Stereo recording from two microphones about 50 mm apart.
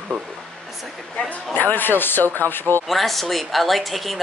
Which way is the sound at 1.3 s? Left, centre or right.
Left.